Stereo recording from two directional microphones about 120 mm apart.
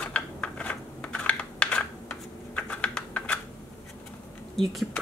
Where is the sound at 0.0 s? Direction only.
10° left (ahead or behind).